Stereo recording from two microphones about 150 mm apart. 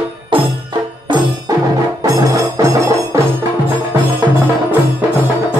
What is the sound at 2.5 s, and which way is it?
Music, 20° right (ahead or behind).